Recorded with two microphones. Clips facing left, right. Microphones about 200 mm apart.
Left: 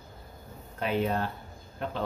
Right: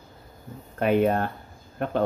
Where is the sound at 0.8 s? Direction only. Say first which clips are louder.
Right 7 dB; 55° right (ahead or behind).